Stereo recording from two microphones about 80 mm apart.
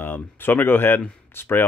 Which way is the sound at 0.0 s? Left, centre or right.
Left.